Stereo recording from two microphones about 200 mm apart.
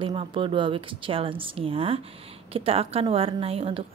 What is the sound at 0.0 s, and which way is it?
A woman's voice, 25° right (ahead or behind).